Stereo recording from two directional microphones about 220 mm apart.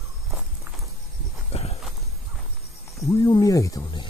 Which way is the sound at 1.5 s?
30° left (ahead or behind).